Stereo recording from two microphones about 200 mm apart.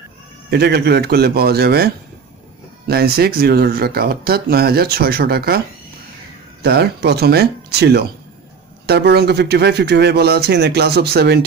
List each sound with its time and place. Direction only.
0.5 s speech: 55° right (ahead or behind)
2.9 s speech: 50° right (ahead or behind)
6.6 s speech: 55° right (ahead or behind)